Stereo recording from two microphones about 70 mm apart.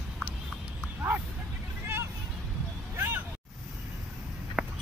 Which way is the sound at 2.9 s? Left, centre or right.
Right.